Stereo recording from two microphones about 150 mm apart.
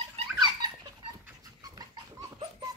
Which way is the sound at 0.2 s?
30° right (ahead or behind).